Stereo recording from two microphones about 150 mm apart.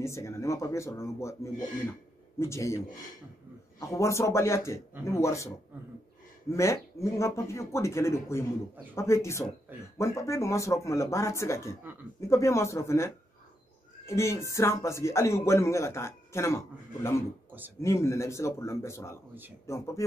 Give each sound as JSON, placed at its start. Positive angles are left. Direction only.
{"t": 0.0, "sound": "a man's voice", "side_deg": 20}
{"t": 3.8, "sound": "a man's voice", "side_deg": 20}
{"t": 6.5, "sound": "a man's voice", "side_deg": 20}
{"t": 17.5, "sound": "a sound", "side_deg": -10}
{"t": 17.8, "sound": "a man's voice", "side_deg": 20}